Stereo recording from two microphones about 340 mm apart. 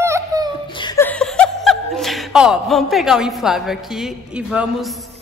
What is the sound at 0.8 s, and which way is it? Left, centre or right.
Speech, centre.